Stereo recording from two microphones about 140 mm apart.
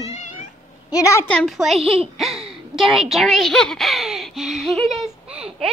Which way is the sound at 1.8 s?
40° right (ahead or behind).